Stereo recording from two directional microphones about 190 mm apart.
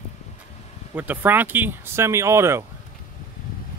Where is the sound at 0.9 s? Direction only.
10° right (ahead or behind).